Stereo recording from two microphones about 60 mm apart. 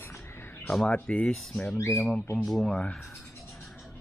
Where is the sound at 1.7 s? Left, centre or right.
Left.